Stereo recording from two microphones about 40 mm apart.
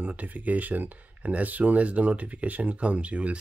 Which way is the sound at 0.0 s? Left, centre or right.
Right.